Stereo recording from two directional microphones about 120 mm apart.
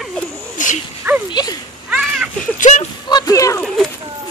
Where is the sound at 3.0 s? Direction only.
35° left (ahead or behind).